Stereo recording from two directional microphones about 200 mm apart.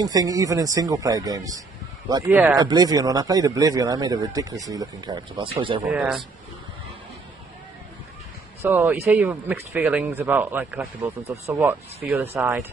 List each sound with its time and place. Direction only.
0.0 s speech: 20° right (ahead or behind)
5.9 s speech: 5° right (ahead or behind)
8.6 s speech: 10° right (ahead or behind)